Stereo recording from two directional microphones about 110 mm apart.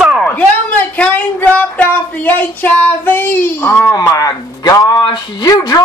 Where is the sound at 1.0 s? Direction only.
15° left (ahead or behind).